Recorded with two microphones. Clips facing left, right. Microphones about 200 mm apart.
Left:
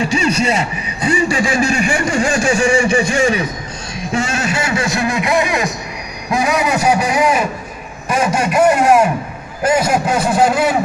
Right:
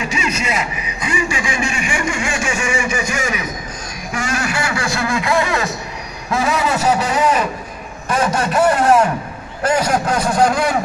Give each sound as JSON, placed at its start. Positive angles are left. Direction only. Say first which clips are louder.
{"t": 0.0, "sound": "speech", "louder": "left 6 dB", "side_deg": 35}
{"t": 4.0, "sound": "a sound", "louder": "left 4 dB", "side_deg": 25}
{"t": 6.3, "sound": "speech", "louder": "left 2 dB", "side_deg": 15}